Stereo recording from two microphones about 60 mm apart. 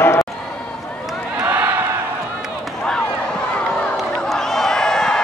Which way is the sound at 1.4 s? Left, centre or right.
Right.